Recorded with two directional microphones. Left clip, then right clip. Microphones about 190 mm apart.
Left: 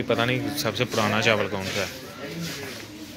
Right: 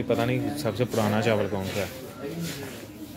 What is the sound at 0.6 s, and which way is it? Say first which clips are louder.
Speech: left 2 dB; 15° right (ahead or behind).